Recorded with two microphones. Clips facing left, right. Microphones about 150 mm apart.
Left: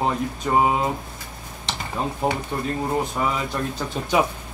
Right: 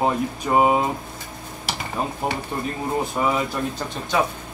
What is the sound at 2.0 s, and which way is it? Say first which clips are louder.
Speech: even; 5° right (ahead or behind).